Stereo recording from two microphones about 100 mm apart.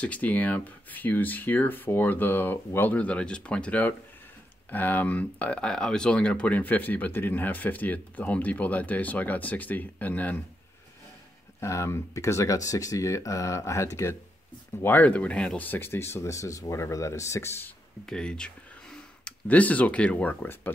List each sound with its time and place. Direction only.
0.0 s speech: 15° left (ahead or behind)
11.6 s speech: 30° left (ahead or behind)
14.8 s speech: 20° left (ahead or behind)
18.0 s speech: 10° left (ahead or behind)